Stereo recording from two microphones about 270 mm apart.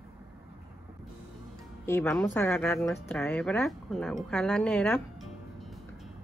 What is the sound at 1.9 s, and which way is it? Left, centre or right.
A woman's voice, centre.